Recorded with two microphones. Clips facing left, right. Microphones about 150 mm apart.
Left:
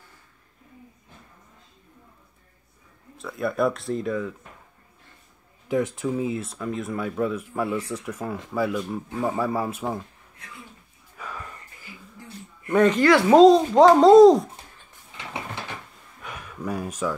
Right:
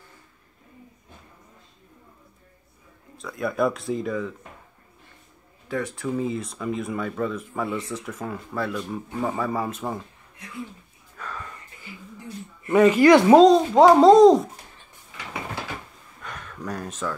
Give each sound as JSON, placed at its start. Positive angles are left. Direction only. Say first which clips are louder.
{"t": 3.2, "sound": "speech", "louder": "even", "side_deg": 0}
{"t": 5.7, "sound": "speech", "louder": "left 4 dB", "side_deg": 20}
{"t": 6.0, "sound": "speech", "louder": "even", "side_deg": 5}
{"t": 11.1, "sound": "sniff", "louder": "right 1 dB", "side_deg": 10}
{"t": 12.6, "sound": "speech", "louder": "right 3 dB", "side_deg": -5}
{"t": 16.2, "sound": "a sound", "louder": "left 1 dB", "side_deg": 5}